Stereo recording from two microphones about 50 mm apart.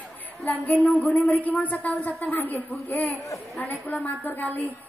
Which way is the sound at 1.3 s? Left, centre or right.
Left.